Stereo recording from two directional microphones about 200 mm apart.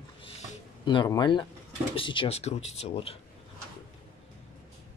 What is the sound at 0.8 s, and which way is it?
Speech, 20° left (ahead or behind).